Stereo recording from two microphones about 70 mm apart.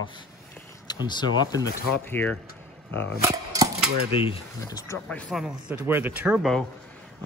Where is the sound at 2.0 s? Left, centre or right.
Left.